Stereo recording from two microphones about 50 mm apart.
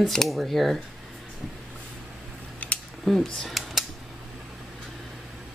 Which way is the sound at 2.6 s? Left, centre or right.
Left.